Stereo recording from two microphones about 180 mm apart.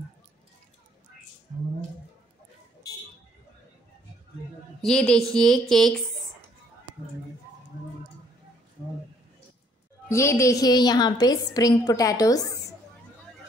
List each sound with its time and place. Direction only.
4.8 s speech: 5° left (ahead or behind)
10.1 s a woman's voice: 15° left (ahead or behind)